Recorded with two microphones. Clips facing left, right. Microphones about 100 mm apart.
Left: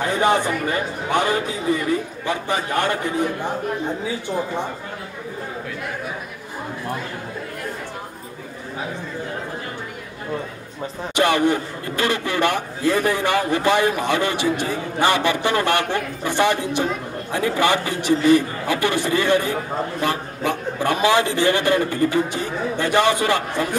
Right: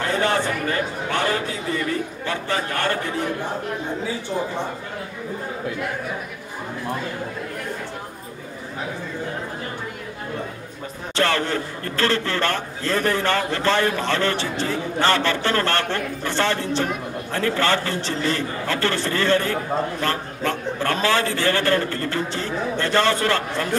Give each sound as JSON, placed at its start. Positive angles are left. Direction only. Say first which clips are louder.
{"t": 0.0, "sound": "a man's voice", "louder": "left 3 dB", "side_deg": 15}
{"t": 11.1, "sound": "a man's voice", "louder": "left 4 dB", "side_deg": 15}